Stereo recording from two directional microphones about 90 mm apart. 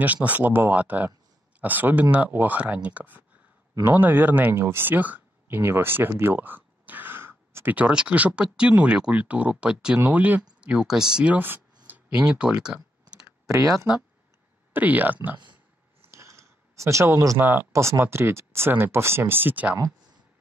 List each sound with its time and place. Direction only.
0.0 s speech: 20° right (ahead or behind)
12.3 s clicking: 10° right (ahead or behind)
13.5 s speech: 35° right (ahead or behind)
13.7 s speech: 10° right (ahead or behind)
14.7 s speech: 20° right (ahead or behind)
16.0 s a sound: 30° right (ahead or behind)
17.4 s speech: 25° right (ahead or behind)
19.8 s a sound: 50° right (ahead or behind)